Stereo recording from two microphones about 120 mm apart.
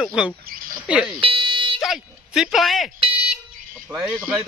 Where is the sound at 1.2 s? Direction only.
45° right (ahead or behind).